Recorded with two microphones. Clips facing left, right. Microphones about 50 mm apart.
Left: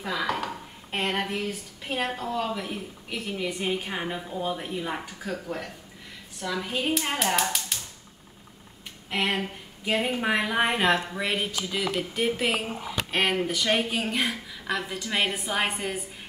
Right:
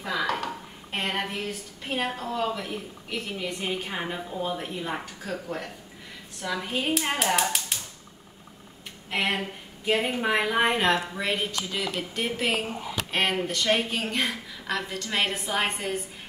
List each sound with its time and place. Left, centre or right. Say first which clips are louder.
0.0 s a woman's voice: right 1 dB; centre
9.1 s a woman's voice: even; centre